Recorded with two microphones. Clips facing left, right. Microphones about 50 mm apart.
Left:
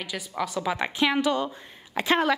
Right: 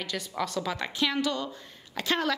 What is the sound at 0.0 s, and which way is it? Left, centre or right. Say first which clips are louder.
A woman's voice: left 1 dB; centre.